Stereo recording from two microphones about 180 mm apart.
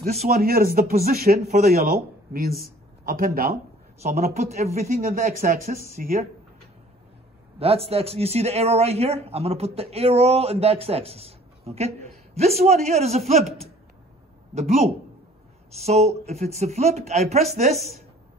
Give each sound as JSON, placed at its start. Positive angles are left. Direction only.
{"t": 0.3, "sound": "a man's voice", "side_deg": -55}
{"t": 4.0, "sound": "speech", "side_deg": -40}
{"t": 7.5, "sound": "speech", "side_deg": -35}
{"t": 14.5, "sound": "speech", "side_deg": -35}
{"t": 17.7, "sound": "speech", "side_deg": 0}